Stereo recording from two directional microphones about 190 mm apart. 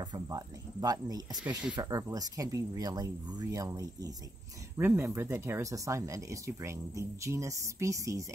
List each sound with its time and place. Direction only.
0.0 s speech: 20° right (ahead or behind)